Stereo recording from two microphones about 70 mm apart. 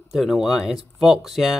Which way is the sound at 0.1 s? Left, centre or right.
Centre.